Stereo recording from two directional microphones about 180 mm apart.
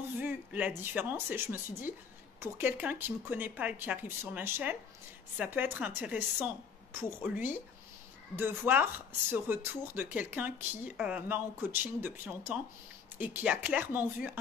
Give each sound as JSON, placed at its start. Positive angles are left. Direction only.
{"t": 0.2, "sound": "speech", "side_deg": -10}